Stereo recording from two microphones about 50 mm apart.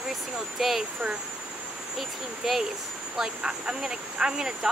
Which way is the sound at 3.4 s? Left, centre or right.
Centre.